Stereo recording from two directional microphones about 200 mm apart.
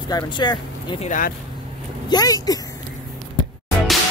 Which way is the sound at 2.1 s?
20° left (ahead or behind).